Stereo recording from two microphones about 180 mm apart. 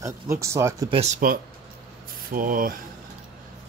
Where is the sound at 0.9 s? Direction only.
40° right (ahead or behind).